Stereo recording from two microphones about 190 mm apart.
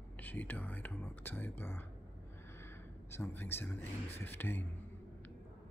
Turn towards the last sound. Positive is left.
turn(degrees=10)  # may be behind; listen again after turning